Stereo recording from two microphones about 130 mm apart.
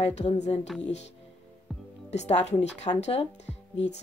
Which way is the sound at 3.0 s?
55° left (ahead or behind).